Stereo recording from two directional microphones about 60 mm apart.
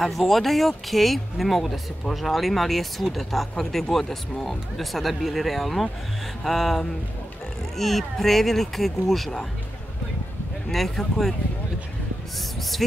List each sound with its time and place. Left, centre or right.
0.0 s speech: centre
10.7 s speech: centre
12.4 s a sound: centre